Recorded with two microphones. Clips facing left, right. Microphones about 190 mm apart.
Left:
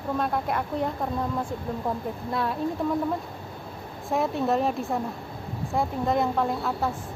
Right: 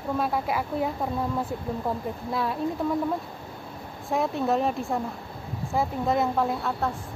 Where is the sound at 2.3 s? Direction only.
Centre (ahead or behind).